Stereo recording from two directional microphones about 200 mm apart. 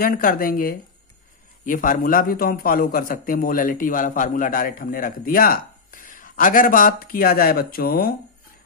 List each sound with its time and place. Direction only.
0.0 s a man's voice: 45° left (ahead or behind)